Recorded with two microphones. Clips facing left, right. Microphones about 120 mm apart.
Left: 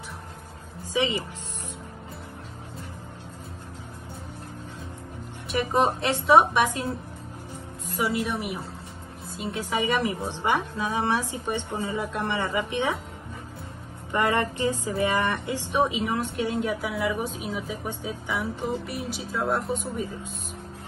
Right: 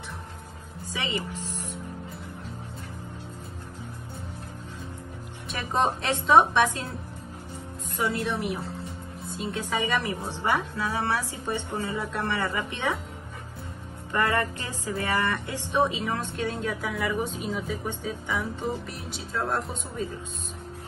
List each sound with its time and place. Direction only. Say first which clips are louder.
0.8 s speech: left 6 dB; 15° left (ahead or behind)
5.7 s speech: left 1 dB; 10° left (ahead or behind)
7.9 s a woman's voice: left 1 dB; 5° left (ahead or behind)
14.1 s speech: left 2 dB; 20° left (ahead or behind)